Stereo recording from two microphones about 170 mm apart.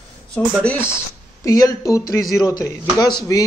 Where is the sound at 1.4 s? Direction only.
20° left (ahead or behind).